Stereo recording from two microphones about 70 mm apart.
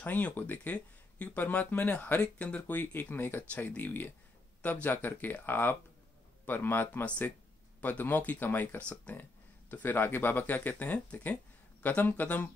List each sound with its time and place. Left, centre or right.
0.0 s speech: left
2.8 s speech: left